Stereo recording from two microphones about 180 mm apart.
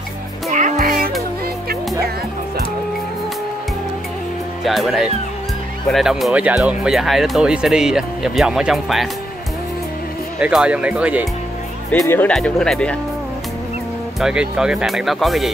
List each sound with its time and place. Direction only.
0.5 s music: 40° right (ahead or behind)
4.6 s speech: centre (ahead or behind)
10.4 s speech: 5° right (ahead or behind)
11.9 s speech: 10° left (ahead or behind)
14.2 s speech: 5° right (ahead or behind)